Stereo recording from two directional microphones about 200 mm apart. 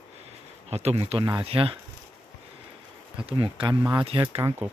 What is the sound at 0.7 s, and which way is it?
Speech, 30° right (ahead or behind).